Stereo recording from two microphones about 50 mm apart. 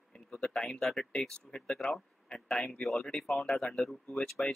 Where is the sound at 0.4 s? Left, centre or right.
Centre.